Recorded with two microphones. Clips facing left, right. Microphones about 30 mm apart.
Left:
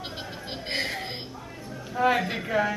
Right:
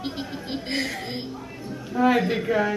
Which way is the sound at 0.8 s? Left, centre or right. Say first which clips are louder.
Right 2 dB; centre.